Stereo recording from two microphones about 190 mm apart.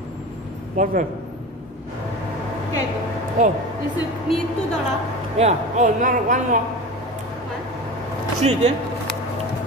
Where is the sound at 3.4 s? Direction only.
40° right (ahead or behind).